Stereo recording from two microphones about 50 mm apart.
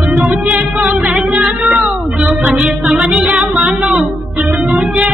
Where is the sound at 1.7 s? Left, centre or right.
Centre.